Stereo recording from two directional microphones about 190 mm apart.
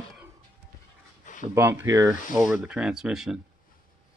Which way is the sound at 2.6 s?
5° right (ahead or behind).